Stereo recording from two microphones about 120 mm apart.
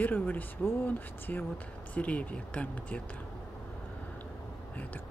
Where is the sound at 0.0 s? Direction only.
15° left (ahead or behind).